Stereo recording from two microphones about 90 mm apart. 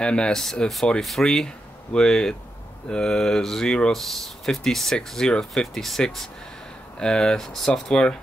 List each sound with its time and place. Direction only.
0.0 s speech: 10° left (ahead or behind)